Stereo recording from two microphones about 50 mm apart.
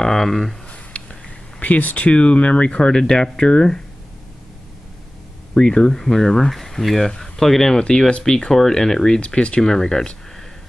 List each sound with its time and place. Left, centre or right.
0.0 s speech: centre
1.6 s speech: left; by 3.8 s centre
5.5 s speech: centre